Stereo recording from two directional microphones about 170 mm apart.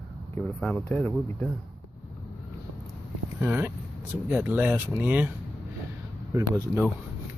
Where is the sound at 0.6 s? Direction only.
10° left (ahead or behind).